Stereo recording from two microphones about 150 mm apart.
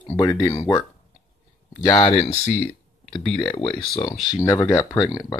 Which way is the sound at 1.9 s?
40° left (ahead or behind).